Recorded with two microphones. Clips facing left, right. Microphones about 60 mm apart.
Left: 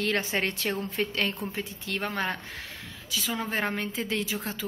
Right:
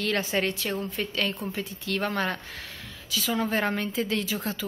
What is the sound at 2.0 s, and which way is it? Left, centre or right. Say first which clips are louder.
A woman's voice: right 2 dB; centre.